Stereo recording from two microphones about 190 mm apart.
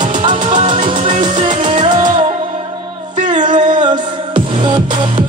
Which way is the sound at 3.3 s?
25° right (ahead or behind).